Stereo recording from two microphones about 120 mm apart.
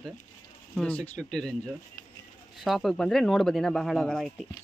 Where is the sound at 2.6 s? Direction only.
Centre (ahead or behind).